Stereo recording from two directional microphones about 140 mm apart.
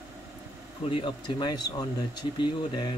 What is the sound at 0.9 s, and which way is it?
Speech, 35° left (ahead or behind).